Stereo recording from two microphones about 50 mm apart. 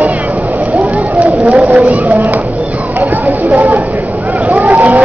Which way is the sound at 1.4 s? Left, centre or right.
Right.